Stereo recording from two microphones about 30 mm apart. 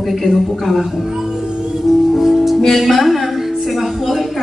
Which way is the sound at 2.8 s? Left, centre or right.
Centre.